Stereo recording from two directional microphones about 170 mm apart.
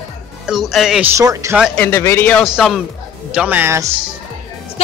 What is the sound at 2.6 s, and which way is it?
A man's voice, centre (ahead or behind).